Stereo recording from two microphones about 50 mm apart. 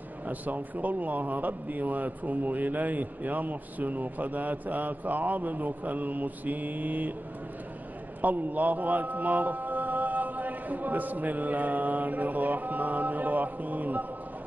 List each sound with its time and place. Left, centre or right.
0.3 s a man's voice: right
8.2 s a man's voice: right